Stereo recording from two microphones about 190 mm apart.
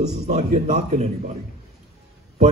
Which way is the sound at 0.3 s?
35° right (ahead or behind).